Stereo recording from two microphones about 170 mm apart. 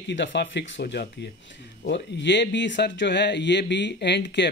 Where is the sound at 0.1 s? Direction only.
90° left.